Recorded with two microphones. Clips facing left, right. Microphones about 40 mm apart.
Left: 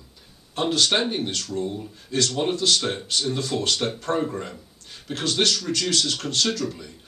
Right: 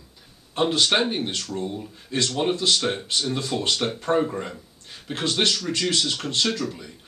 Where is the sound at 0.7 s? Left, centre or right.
Centre.